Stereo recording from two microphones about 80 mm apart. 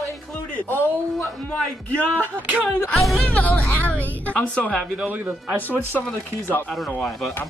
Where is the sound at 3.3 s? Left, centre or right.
Centre.